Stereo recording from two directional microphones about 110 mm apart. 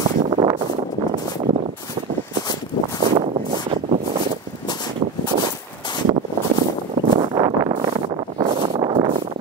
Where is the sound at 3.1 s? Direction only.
55° right (ahead or behind).